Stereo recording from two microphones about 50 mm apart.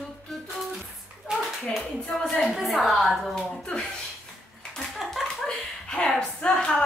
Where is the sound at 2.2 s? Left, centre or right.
Centre.